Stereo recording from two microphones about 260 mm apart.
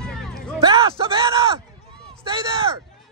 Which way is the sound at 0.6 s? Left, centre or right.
Centre.